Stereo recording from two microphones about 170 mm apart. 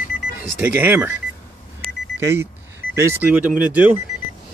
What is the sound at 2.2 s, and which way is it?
Speech, 15° right (ahead or behind).